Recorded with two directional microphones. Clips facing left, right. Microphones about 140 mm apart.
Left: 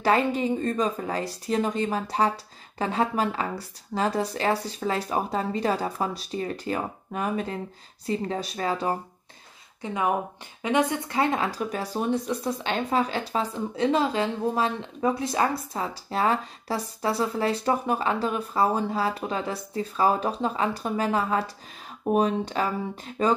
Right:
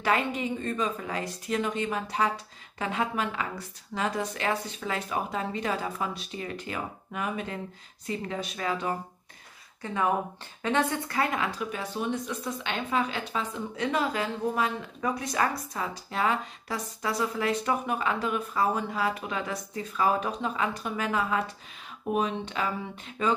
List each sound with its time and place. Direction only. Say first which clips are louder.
0.0 s speech: left 5 dB; 35° left (ahead or behind)
9.8 s speech: left 1 dB; 15° left (ahead or behind); by 23.3 s 40° left (ahead or behind)